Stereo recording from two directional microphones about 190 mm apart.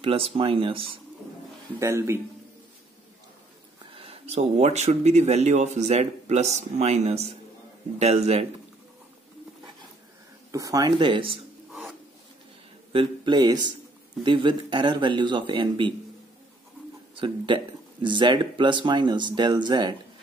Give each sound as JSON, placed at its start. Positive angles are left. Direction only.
{"t": 0.0, "sound": "speech", "side_deg": -30}
{"t": 1.8, "sound": "speech", "side_deg": -15}
{"t": 3.8, "sound": "speech", "side_deg": -30}
{"t": 10.5, "sound": "speech", "side_deg": -20}
{"t": 12.9, "sound": "a man's voice", "side_deg": -25}
{"t": 17.1, "sound": "speech", "side_deg": -25}